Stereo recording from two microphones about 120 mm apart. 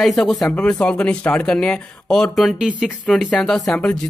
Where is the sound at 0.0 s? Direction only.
Centre (ahead or behind).